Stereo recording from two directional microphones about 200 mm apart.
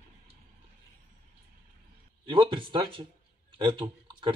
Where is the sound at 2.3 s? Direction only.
25° right (ahead or behind).